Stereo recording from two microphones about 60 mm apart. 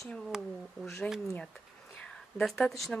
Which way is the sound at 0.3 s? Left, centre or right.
Centre.